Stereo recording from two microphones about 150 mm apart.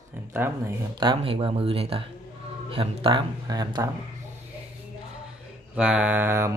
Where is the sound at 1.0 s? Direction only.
35° right (ahead or behind).